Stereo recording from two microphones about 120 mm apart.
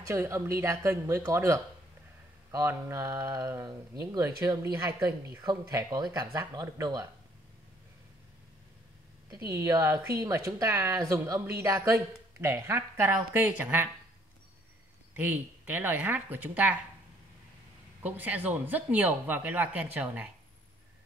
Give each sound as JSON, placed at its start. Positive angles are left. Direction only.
{"t": 0.3, "sound": "speech", "side_deg": -25}
{"t": 5.4, "sound": "speech", "side_deg": -35}
{"t": 9.3, "sound": "speech", "side_deg": -30}
{"t": 15.1, "sound": "speech", "side_deg": -15}
{"t": 18.0, "sound": "speech", "side_deg": -15}